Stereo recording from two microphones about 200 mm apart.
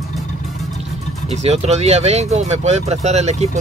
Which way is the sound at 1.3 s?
35° right (ahead or behind).